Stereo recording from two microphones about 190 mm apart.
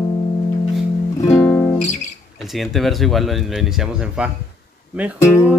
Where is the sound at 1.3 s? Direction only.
15° left (ahead or behind).